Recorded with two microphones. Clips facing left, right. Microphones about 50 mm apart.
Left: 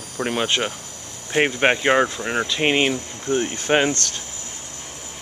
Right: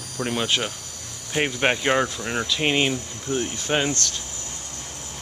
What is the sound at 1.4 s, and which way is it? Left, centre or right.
Speech, centre.